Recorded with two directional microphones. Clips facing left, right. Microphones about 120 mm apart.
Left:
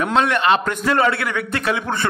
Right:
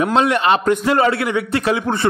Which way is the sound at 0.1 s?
30° right (ahead or behind).